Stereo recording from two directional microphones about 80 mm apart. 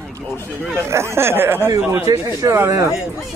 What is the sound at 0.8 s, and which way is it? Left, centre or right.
Speech, right.